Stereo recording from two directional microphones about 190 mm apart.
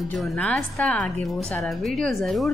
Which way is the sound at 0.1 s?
5° left (ahead or behind).